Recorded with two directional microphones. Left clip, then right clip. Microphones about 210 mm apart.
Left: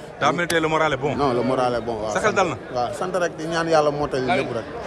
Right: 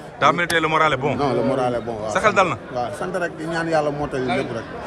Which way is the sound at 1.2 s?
5° left (ahead or behind).